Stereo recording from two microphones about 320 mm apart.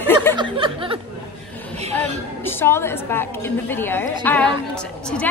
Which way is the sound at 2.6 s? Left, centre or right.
Centre.